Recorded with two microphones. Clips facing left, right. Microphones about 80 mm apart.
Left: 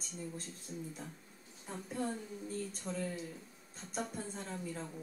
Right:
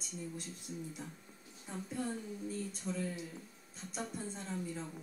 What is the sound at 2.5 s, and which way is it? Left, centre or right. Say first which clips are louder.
Speech: even; left.